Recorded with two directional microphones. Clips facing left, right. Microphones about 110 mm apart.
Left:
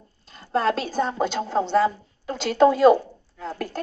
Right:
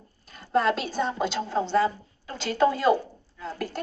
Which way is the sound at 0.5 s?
40° left (ahead or behind).